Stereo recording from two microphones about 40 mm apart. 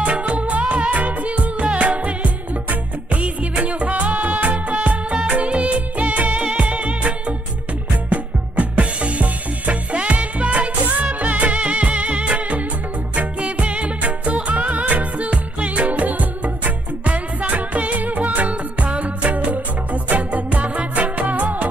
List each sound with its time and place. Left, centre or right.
0.0 s music: right